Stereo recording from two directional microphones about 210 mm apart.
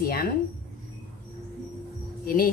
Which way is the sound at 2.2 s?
45° left (ahead or behind).